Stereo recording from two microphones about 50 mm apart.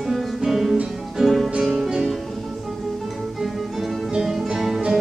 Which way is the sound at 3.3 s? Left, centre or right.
Centre.